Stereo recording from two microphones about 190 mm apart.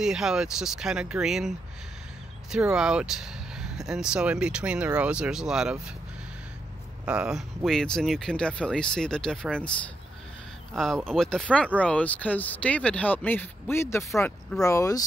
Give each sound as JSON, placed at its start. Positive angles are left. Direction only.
{"t": 0.0, "sound": "speech", "side_deg": -5}
{"t": 2.5, "sound": "speech", "side_deg": -5}
{"t": 7.1, "sound": "speech", "side_deg": -5}
{"t": 10.7, "sound": "speech", "side_deg": 0}